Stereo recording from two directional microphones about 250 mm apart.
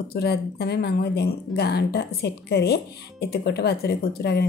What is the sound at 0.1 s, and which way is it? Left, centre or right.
Speech, left.